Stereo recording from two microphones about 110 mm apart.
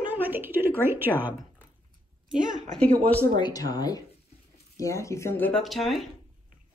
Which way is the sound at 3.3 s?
40° left (ahead or behind).